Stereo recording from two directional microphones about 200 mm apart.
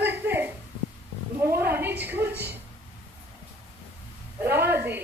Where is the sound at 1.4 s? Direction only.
10° right (ahead or behind).